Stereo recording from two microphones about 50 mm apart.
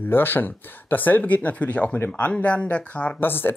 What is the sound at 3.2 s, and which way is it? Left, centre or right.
Speech, left.